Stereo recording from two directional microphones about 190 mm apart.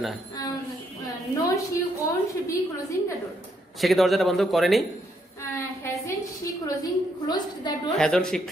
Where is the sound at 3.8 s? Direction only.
Centre (ahead or behind).